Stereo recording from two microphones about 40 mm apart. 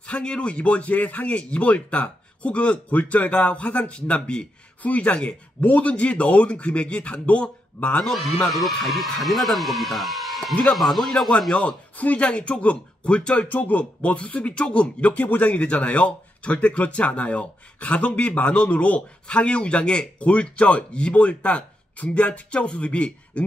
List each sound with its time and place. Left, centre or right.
0.0 s speech: left
3.9 s speech: left
4.8 s speech: left
8.5 s speech: centre
11.3 s speech: centre
12.0 s speech: left
12.3 s speech: left
13.5 s speech: left
18.9 s speech: left